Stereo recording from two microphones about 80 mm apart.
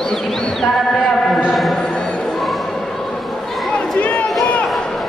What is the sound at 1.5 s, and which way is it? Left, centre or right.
Music, centre.